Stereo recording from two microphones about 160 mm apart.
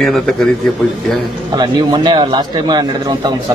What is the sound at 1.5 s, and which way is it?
A man's voice, 25° right (ahead or behind).